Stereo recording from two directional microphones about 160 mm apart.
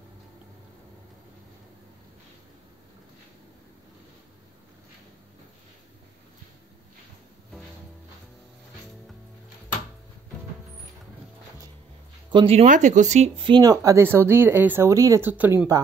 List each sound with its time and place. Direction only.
12.3 s speech: 35° right (ahead or behind)
12.6 s speech: 50° right (ahead or behind); by 15.8 s 20° right (ahead or behind)